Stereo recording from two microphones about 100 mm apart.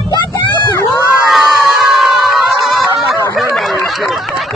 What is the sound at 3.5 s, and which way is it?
Snicker, centre (ahead or behind).